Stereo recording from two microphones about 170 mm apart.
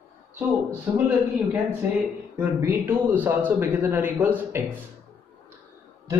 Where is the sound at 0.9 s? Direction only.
15° right (ahead or behind).